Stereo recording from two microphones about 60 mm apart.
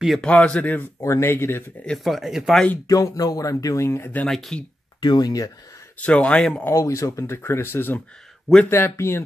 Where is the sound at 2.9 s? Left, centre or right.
Left.